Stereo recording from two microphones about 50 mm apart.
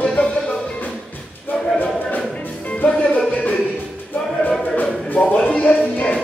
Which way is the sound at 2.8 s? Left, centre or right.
Left.